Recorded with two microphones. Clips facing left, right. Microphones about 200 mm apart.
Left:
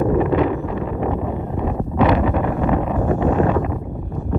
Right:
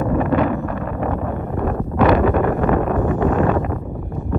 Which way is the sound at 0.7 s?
15° left (ahead or behind).